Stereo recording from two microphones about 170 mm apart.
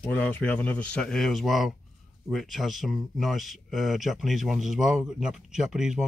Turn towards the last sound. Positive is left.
turn(degrees=-5)  # may be behind; listen again after turning